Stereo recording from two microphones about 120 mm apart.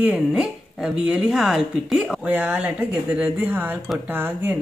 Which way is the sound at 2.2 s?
15° right (ahead or behind).